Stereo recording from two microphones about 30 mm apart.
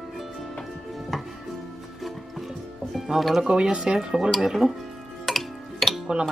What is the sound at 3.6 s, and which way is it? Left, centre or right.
Speech, right.